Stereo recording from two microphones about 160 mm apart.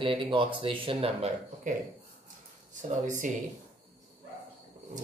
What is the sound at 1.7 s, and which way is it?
Speech, 50° right (ahead or behind).